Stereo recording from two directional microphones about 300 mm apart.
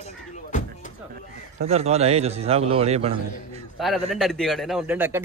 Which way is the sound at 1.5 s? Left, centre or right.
Right.